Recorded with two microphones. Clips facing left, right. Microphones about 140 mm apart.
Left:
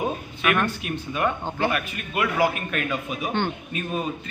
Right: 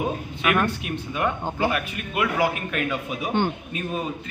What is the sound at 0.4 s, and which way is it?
Speech, 15° right (ahead or behind).